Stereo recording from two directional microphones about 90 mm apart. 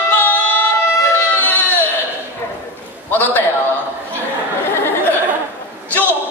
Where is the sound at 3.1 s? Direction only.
20° left (ahead or behind).